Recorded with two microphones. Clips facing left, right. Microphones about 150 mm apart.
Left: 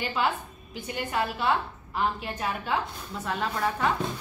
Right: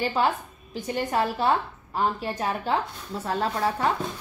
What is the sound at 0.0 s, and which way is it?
A woman's voice, 35° right (ahead or behind).